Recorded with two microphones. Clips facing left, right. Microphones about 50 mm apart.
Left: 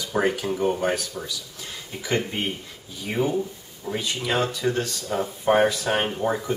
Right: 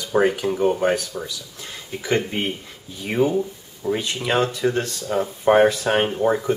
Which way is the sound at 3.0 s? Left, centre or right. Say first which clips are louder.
Right 4 dB; centre.